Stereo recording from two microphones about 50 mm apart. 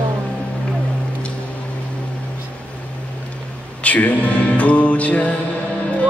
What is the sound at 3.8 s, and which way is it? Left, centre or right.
Music, left.